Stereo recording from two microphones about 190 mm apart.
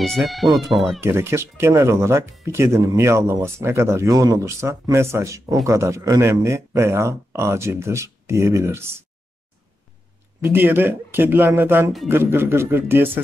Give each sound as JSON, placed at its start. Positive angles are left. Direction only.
{"t": 0.0, "sound": "speech", "side_deg": 0}
{"t": 1.0, "sound": "speech", "side_deg": -10}
{"t": 10.4, "sound": "speech", "side_deg": -10}